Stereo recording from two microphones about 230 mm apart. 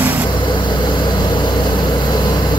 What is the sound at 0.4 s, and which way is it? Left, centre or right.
Vehicle, centre.